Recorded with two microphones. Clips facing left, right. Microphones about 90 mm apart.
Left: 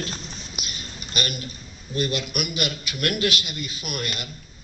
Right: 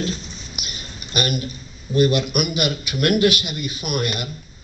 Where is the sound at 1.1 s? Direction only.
20° right (ahead or behind).